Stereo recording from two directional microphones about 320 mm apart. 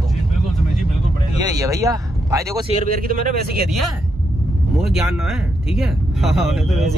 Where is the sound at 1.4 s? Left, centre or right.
Centre.